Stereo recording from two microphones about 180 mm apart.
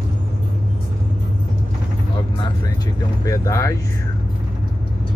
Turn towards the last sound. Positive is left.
turn(degrees=20)  # may be behind; listen again after turning